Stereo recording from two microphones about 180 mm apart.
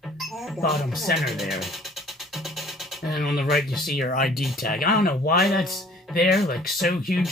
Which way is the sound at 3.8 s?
55° left (ahead or behind).